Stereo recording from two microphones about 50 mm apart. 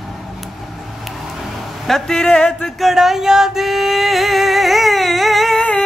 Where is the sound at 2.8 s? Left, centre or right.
Centre.